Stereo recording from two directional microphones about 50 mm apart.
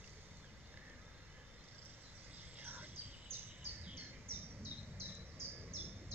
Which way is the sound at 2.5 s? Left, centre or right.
Right.